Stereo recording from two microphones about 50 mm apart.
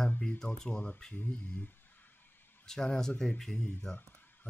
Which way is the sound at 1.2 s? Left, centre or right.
Left.